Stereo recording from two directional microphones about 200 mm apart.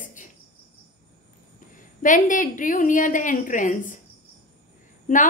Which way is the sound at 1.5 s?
40° left (ahead or behind).